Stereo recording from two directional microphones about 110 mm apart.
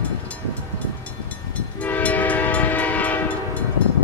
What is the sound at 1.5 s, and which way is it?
Train, 15° left (ahead or behind).